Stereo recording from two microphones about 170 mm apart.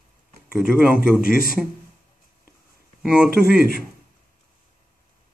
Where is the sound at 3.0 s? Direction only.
5° right (ahead or behind).